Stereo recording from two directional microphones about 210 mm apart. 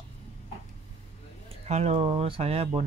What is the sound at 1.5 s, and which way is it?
Speech, 30° right (ahead or behind).